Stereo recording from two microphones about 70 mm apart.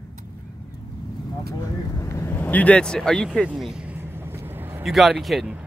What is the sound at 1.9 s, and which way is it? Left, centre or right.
Vehicle, left.